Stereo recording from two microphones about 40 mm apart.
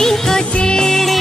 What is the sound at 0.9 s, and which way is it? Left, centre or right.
Music, centre.